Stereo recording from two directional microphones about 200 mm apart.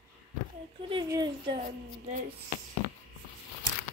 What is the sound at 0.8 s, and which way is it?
Speech, 25° right (ahead or behind).